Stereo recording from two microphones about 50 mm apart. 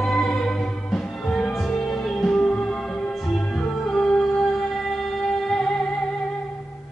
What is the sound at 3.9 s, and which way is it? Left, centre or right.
Music, centre.